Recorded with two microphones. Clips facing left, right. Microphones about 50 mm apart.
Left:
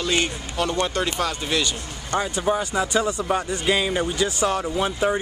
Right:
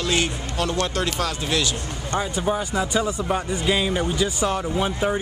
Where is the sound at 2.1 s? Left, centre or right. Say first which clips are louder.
Left 1 dB; centre.